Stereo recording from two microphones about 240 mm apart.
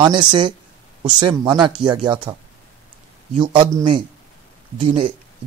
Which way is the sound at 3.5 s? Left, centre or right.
Centre.